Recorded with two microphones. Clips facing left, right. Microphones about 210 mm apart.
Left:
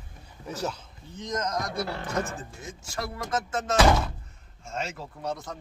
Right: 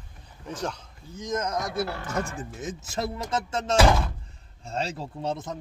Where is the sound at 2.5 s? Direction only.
20° right (ahead or behind).